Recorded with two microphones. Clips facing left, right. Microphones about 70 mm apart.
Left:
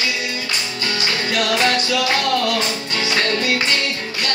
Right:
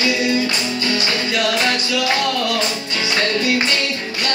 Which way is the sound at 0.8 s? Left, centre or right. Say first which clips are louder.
Even; centre.